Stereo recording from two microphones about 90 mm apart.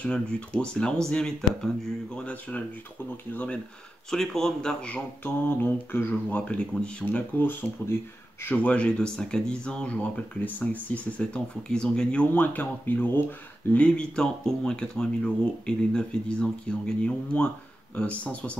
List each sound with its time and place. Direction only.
0.0 s speech: 10° left (ahead or behind)
4.1 s speech: 5° left (ahead or behind); by 6.4 s 25° left (ahead or behind)
6.4 s speech: 10° left (ahead or behind)